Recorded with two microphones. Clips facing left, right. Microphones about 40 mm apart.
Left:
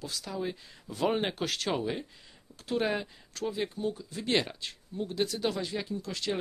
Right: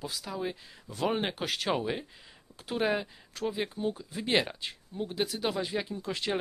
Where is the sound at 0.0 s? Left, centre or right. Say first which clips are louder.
Even; centre.